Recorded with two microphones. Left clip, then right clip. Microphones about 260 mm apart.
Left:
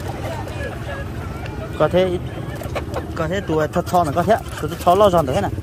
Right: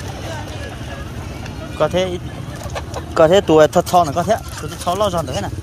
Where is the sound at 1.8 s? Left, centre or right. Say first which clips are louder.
Left 1 dB; centre.